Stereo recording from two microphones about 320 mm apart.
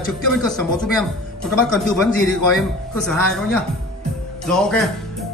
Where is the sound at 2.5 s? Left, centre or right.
Centre.